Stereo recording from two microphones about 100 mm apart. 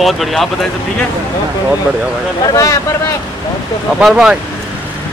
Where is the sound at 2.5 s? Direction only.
35° left (ahead or behind).